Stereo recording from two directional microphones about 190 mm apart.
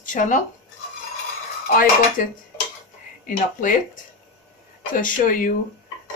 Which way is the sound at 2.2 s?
45° left (ahead or behind).